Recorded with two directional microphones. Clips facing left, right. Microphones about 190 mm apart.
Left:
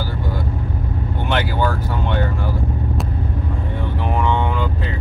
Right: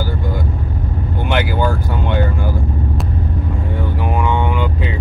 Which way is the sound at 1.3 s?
10° right (ahead or behind).